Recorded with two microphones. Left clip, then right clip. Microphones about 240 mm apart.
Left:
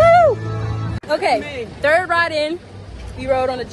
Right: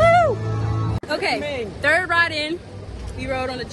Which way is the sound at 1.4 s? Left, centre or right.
Right.